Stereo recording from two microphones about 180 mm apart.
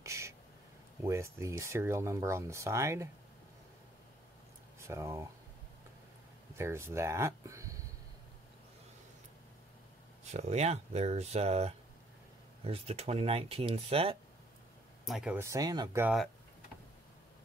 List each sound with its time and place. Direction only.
0.0 s a sound: 15° right (ahead or behind)
1.0 s speech: 15° right (ahead or behind)
4.7 s speech: 15° right (ahead or behind)
6.5 s speech: 15° right (ahead or behind)
10.3 s speech: 40° right (ahead or behind)
15.0 s speech: 5° right (ahead or behind)
15.4 s speech: 20° right (ahead or behind)
16.0 s speech: 5° right (ahead or behind)